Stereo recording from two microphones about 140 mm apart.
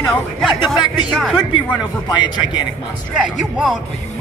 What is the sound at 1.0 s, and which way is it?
Speech, 10° right (ahead or behind).